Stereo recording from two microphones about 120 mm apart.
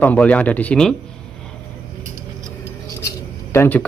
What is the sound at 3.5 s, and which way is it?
Speech, 15° left (ahead or behind).